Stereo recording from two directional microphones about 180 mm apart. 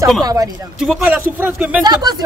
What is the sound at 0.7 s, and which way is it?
Speech, 5° right (ahead or behind).